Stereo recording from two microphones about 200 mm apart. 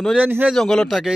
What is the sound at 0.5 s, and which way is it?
Speech, 5° left (ahead or behind).